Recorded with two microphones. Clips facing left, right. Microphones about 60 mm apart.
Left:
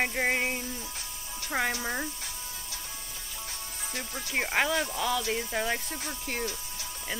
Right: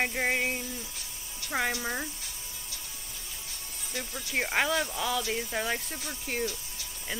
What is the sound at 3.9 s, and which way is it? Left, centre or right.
Speech, centre.